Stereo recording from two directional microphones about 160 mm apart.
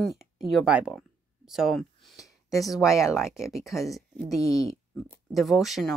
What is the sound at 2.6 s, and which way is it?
Speech, centre (ahead or behind).